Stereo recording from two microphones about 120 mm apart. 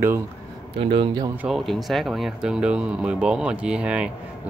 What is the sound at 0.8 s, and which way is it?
Speech, 45° right (ahead or behind).